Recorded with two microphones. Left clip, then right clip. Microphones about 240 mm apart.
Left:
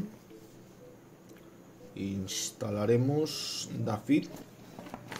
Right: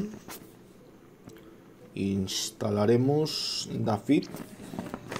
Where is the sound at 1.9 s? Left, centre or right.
Right.